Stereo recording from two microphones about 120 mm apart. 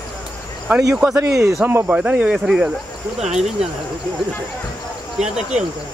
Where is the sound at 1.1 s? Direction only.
25° right (ahead or behind).